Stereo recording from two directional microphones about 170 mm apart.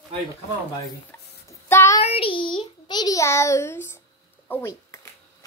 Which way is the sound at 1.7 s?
15° left (ahead or behind).